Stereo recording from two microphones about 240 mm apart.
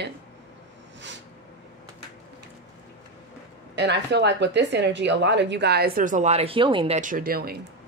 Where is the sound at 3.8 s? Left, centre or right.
Right.